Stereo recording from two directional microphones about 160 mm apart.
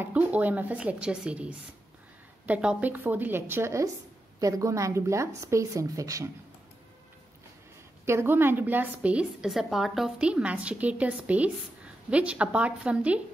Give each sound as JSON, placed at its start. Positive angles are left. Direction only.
{"t": 0.0, "sound": "a woman's voice", "side_deg": -10}
{"t": 8.0, "sound": "a woman's voice", "side_deg": -15}